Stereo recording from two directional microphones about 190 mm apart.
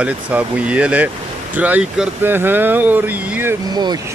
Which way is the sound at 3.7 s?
20° right (ahead or behind).